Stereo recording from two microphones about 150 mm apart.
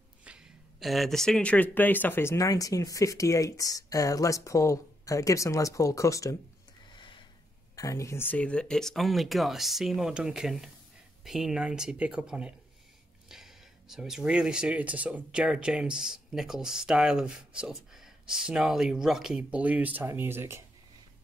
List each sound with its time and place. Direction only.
0.2 s speech: 5° right (ahead or behind); by 6.3 s 20° left (ahead or behind)
6.9 s a sound: 30° left (ahead or behind)
7.7 s speech: 20° left (ahead or behind); by 20.6 s 15° right (ahead or behind)